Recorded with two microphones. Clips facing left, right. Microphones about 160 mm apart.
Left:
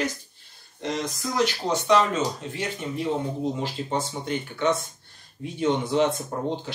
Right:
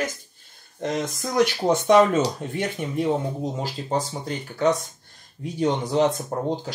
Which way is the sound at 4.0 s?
40° right (ahead or behind).